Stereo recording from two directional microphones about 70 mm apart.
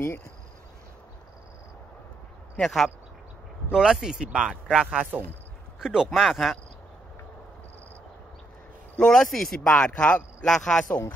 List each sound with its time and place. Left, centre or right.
2.6 s speech: centre
3.7 s a man's voice: centre
8.9 s speech: centre
9.7 s speech: centre
10.9 s speech: left